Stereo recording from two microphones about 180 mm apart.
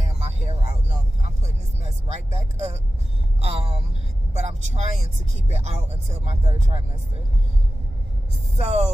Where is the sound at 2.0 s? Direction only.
35° right (ahead or behind).